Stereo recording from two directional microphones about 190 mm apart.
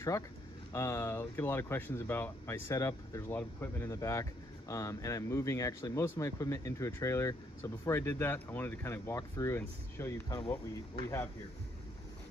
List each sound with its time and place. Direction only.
0.7 s speech: 15° left (ahead or behind)